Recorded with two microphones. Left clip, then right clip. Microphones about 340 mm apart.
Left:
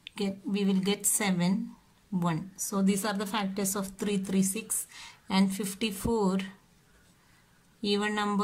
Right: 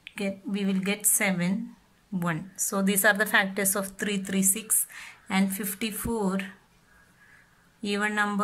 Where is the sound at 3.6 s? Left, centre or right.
Right.